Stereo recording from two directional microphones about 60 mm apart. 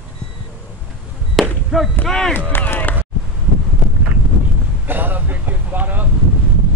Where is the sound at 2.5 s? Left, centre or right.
Left.